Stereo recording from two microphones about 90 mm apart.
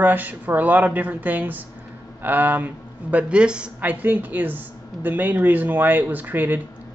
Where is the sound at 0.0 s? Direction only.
20° right (ahead or behind).